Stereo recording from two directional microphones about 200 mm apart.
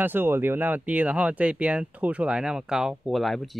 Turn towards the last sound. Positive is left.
turn(degrees=0)  # may be behind; listen again after turning